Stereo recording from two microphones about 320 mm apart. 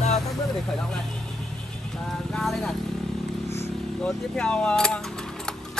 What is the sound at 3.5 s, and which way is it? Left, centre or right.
Speech, centre.